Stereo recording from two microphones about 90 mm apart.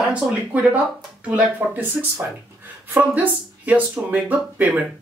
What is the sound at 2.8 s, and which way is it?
Speech, 20° right (ahead or behind).